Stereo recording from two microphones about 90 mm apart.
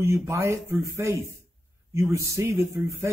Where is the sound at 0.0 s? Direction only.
30° right (ahead or behind).